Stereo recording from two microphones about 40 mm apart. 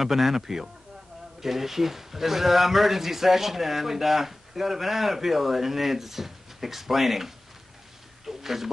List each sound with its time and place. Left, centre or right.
0.0 s speech: centre